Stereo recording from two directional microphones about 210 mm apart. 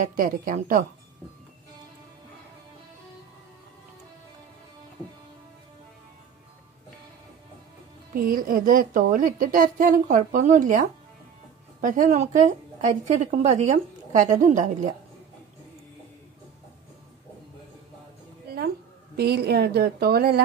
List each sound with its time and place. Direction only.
0.0 s a woman's voice: 40° right (ahead or behind)
8.1 s a woman's voice: 45° right (ahead or behind)
19.1 s a woman's voice: 50° right (ahead or behind)